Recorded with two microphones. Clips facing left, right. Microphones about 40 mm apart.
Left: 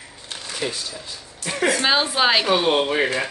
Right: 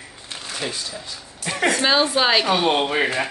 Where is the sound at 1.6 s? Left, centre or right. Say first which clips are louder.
Right 1 dB; centre.